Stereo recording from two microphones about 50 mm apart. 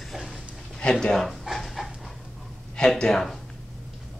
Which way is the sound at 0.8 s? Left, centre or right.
Centre.